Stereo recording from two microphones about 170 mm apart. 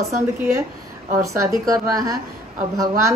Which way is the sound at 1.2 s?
20° right (ahead or behind).